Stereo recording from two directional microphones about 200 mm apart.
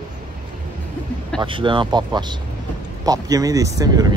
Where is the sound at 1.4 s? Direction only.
25° right (ahead or behind).